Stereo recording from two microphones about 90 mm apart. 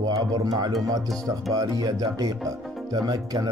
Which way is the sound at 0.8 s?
40° right (ahead or behind).